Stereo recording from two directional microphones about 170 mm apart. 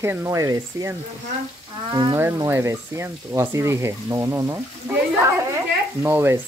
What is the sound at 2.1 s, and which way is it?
Speech, 15° right (ahead or behind).